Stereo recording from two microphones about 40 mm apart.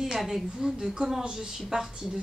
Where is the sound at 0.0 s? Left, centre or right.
Centre.